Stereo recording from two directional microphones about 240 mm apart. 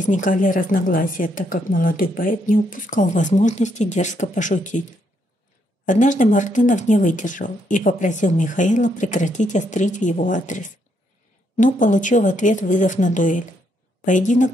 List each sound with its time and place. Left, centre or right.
0.0 s speech: left
5.9 s speech: left